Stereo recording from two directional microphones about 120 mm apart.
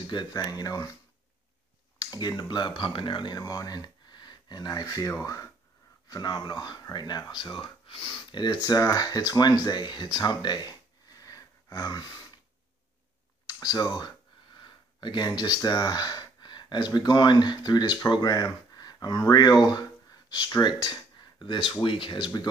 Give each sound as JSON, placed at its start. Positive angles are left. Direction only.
{"t": 0.0, "sound": "speech", "side_deg": 35}
{"t": 2.0, "sound": "speech", "side_deg": 35}
{"t": 13.5, "sound": "speech", "side_deg": 35}